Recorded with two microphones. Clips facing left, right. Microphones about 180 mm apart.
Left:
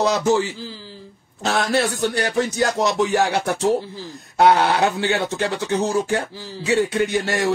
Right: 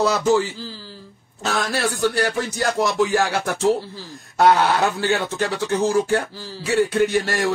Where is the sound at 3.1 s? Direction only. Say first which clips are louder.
Left 1 dB; 15° left (ahead or behind).